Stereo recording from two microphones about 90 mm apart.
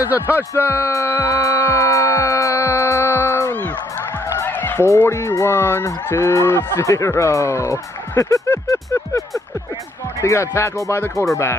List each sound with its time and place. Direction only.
0.3 s music: 30° left (ahead or behind)
4.4 s a sound: 20° left (ahead or behind)
4.9 s honk: 30° left (ahead or behind)
10.2 s honk: 35° left (ahead or behind)